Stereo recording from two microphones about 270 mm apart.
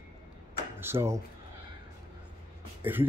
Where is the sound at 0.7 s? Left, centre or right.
Centre.